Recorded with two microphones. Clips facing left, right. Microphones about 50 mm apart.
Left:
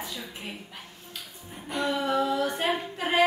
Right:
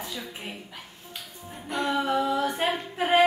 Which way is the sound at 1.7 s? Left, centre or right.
Centre.